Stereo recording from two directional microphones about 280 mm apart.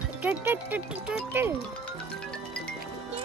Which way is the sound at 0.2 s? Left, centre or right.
Centre.